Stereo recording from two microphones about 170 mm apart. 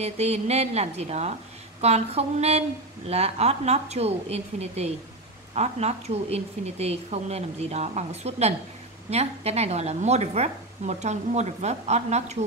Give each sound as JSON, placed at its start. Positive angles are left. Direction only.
{"t": 0.0, "sound": "speech", "side_deg": -40}